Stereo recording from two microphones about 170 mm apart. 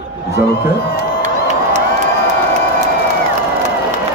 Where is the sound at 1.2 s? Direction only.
45° right (ahead or behind).